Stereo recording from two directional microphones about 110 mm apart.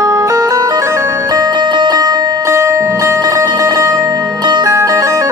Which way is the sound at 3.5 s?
45° right (ahead or behind).